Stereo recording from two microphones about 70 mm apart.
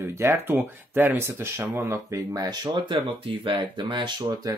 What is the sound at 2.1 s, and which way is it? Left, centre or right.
Speech, right.